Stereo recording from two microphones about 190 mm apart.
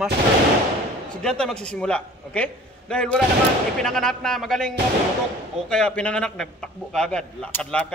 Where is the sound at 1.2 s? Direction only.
5° left (ahead or behind).